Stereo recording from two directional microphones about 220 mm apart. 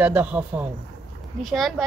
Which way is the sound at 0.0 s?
5° right (ahead or behind).